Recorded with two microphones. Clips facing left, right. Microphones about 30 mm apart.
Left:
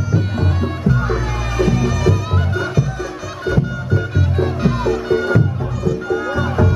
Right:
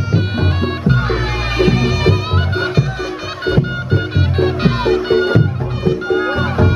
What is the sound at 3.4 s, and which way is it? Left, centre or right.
Music, right.